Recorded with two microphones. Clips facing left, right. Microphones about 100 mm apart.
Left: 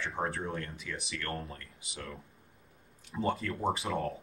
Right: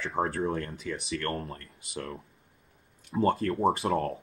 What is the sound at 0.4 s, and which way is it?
Speech, 50° right (ahead or behind).